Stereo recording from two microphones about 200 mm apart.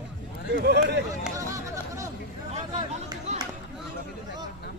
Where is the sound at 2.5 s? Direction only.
35° right (ahead or behind).